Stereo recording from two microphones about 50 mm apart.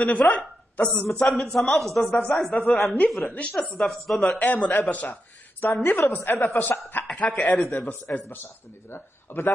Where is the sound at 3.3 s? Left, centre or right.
Left.